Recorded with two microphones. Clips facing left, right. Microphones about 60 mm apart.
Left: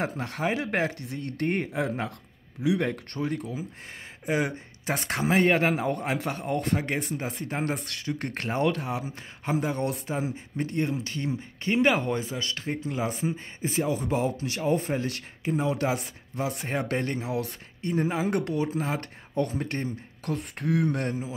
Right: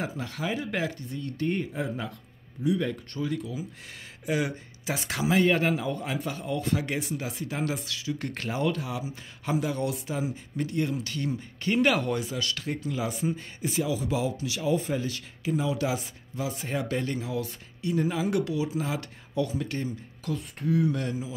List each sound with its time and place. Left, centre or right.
0.0 s speech: left
0.9 s speech: left
2.8 s speech: left
17.9 s speech: left